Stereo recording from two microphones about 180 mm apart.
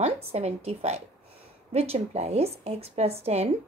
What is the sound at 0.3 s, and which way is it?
A woman's voice, 35° right (ahead or behind).